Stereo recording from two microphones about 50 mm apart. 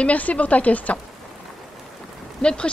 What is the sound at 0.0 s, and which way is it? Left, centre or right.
Speech, left.